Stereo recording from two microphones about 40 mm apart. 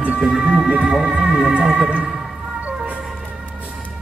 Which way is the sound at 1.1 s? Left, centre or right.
Centre.